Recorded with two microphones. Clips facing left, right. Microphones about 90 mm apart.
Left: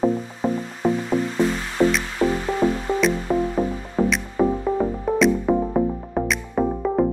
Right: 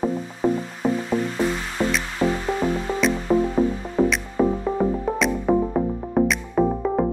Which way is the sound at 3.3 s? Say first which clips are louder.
Right 5 dB; 15° right (ahead or behind).